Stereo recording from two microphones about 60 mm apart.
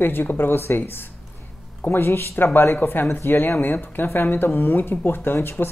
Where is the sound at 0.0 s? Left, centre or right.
Left.